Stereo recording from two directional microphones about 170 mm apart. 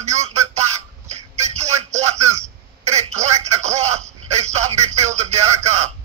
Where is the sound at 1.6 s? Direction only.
40° right (ahead or behind).